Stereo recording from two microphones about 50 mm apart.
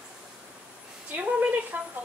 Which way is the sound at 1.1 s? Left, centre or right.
Right.